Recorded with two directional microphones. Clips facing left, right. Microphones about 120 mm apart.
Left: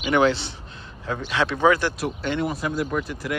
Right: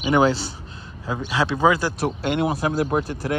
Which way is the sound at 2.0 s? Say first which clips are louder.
Right 3 dB; 55° right (ahead or behind).